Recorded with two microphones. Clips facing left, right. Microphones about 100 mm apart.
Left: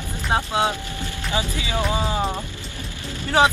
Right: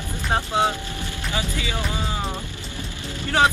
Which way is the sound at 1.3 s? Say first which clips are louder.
Left 3 dB; 20° left (ahead or behind).